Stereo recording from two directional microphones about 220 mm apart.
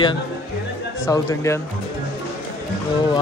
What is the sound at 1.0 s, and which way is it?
Speech, 15° left (ahead or behind).